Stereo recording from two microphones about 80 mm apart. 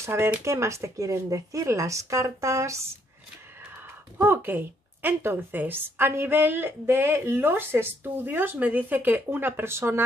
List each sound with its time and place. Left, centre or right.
0.0 s speech: right
4.2 s a woman's voice: right